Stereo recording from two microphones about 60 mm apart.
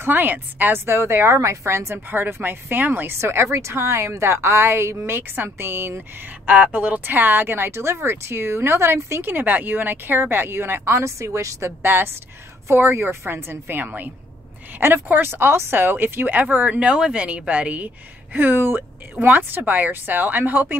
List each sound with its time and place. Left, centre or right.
0.0 s a woman's voice: right
2.0 s speech: right
6.4 s speech: right
7.7 s a woman's voice: right
9.3 s speech: right
11.8 s speech: right